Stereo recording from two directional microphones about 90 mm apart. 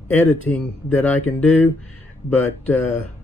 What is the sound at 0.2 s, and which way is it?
Speech, 20° left (ahead or behind).